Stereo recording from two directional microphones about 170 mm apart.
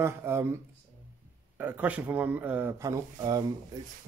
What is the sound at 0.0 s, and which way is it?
Speech, 15° right (ahead or behind).